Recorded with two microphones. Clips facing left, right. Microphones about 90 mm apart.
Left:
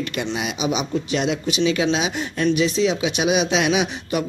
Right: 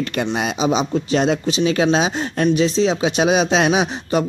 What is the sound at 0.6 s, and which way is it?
Speech, 35° right (ahead or behind).